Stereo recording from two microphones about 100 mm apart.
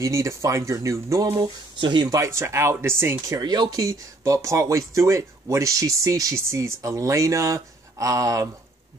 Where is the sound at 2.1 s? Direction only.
30° right (ahead or behind).